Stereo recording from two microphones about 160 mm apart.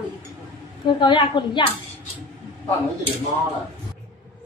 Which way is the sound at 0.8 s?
30° left (ahead or behind).